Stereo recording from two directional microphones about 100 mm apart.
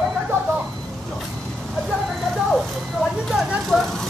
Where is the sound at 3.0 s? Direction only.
Centre (ahead or behind).